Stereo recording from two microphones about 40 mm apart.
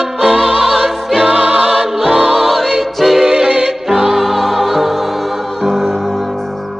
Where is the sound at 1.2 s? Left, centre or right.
Right.